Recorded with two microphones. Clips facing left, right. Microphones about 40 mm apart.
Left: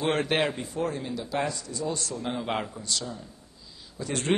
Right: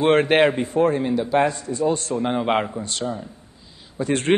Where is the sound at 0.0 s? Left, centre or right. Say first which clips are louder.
Right 9 dB; right.